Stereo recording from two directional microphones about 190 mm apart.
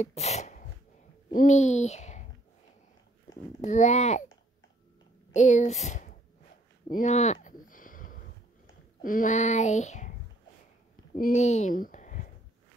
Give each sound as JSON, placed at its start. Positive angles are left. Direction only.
{"t": 0.0, "sound": "sneeze", "side_deg": 35}
{"t": 1.3, "sound": "a child's voice", "side_deg": 40}
{"t": 3.6, "sound": "a sound", "side_deg": 40}
{"t": 5.3, "sound": "a woman's voice", "side_deg": 40}
{"t": 6.9, "sound": "a sound", "side_deg": 40}
{"t": 11.1, "sound": "speech", "side_deg": 40}